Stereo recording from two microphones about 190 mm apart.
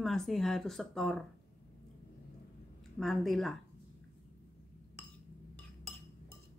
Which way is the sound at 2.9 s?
Centre (ahead or behind).